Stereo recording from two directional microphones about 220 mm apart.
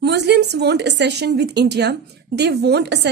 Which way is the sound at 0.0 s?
50° right (ahead or behind).